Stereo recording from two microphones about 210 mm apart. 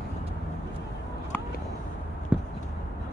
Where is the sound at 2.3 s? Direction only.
5° right (ahead or behind).